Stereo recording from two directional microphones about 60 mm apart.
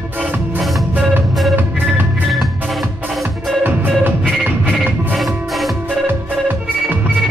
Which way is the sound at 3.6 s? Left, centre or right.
Right.